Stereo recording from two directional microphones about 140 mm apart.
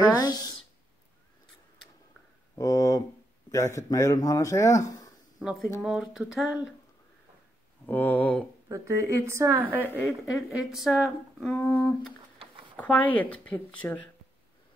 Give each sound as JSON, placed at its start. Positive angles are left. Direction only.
{"t": 0.0, "sound": "speech", "side_deg": 30}
{"t": 2.5, "sound": "a sound", "side_deg": 25}
{"t": 3.5, "sound": "speech", "side_deg": 20}
{"t": 5.4, "sound": "a woman's voice", "side_deg": -5}
{"t": 7.8, "sound": "speech", "side_deg": 15}
{"t": 8.6, "sound": "a woman's voice", "side_deg": -20}
{"t": 10.0, "sound": "a woman's voice", "side_deg": 0}
{"t": 11.5, "sound": "speech", "side_deg": 10}